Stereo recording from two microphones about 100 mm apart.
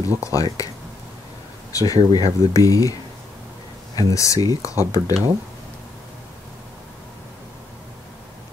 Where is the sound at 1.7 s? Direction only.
35° left (ahead or behind).